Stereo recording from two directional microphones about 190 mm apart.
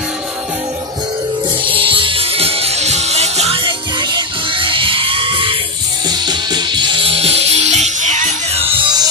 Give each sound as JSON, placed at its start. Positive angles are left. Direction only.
{"t": 1.7, "sound": "music", "side_deg": -30}